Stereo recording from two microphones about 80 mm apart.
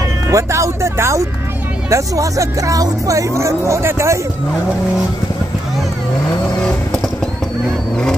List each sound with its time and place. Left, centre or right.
0.3 s speech: right